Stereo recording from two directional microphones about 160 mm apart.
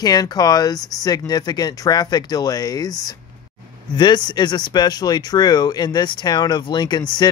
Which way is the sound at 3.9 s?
30° left (ahead or behind).